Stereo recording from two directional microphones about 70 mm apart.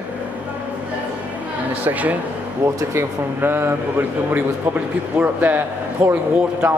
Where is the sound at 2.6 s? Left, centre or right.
Right.